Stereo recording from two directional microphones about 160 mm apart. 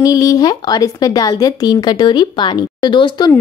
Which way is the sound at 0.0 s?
20° left (ahead or behind).